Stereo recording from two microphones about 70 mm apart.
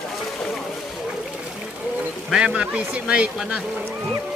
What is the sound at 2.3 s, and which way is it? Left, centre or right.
Speech, centre.